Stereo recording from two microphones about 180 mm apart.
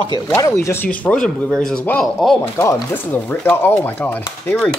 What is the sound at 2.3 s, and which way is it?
Speech, 15° left (ahead or behind).